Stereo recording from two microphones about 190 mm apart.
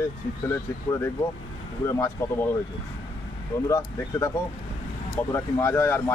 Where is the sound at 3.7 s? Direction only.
15° left (ahead or behind).